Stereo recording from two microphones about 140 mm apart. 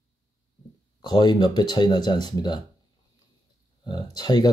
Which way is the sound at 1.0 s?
30° left (ahead or behind).